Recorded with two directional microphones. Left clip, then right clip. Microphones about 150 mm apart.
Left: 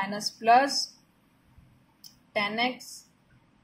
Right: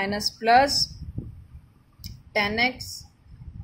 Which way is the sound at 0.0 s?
35° right (ahead or behind).